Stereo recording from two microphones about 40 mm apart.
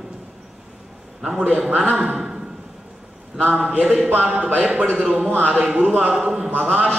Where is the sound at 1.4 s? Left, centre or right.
Right.